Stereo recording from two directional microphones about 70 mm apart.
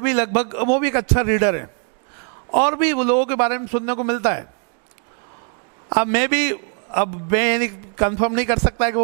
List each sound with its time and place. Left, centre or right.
0.0 s a man's voice: centre
5.9 s a man's voice: right